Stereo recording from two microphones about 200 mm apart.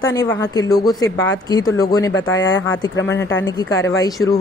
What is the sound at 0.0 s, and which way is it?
Speech, 20° left (ahead or behind).